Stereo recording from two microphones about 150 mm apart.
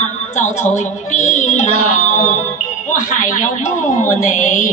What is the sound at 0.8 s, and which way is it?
Music, 55° left (ahead or behind).